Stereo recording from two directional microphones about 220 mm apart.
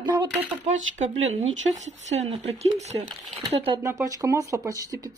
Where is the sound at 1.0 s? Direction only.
30° right (ahead or behind).